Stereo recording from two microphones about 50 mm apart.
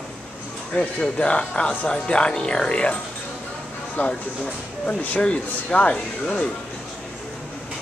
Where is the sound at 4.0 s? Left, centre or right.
Left.